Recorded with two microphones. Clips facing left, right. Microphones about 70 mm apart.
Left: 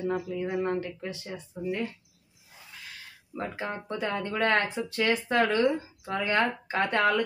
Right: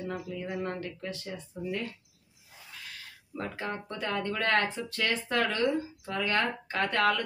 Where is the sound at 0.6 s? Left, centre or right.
Centre.